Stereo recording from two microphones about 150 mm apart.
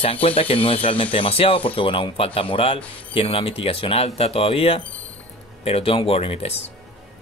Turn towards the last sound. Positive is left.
turn(degrees=40)  # may be behind; listen again after turning